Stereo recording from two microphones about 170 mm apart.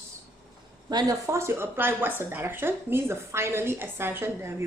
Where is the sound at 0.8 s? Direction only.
20° right (ahead or behind).